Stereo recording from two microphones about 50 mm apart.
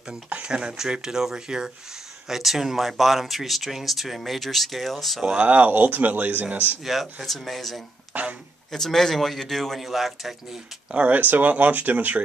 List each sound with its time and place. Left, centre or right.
0.3 s speech: centre
5.4 s speech: right
6.8 s speech: centre
8.1 s a sound: right
8.7 s speech: centre
11.0 s speech: right